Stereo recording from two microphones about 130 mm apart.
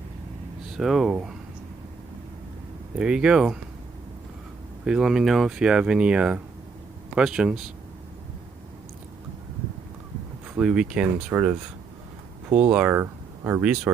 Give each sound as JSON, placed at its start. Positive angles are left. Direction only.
{"t": 0.7, "sound": "speech", "side_deg": -5}
{"t": 3.0, "sound": "speech", "side_deg": -5}
{"t": 4.8, "sound": "speech", "side_deg": -5}
{"t": 10.5, "sound": "speech", "side_deg": -5}